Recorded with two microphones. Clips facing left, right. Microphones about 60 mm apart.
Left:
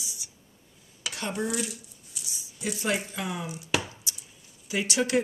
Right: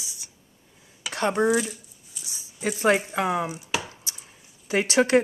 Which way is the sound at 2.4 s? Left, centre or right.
Right.